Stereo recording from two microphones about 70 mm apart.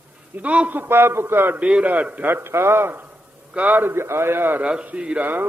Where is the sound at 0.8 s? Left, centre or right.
Right.